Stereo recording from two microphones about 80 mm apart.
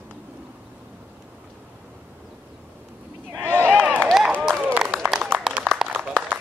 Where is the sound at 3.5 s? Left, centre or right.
Right.